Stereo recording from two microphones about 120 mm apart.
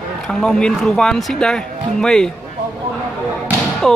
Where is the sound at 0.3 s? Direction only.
5° left (ahead or behind).